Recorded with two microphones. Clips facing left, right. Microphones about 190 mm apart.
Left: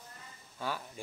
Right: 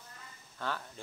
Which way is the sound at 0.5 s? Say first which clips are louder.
Left 1 dB; 10° left (ahead or behind).